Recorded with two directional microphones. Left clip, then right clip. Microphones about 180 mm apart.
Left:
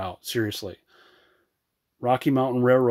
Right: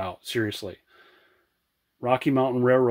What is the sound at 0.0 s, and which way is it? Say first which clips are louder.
Speech: even; 25° left (ahead or behind).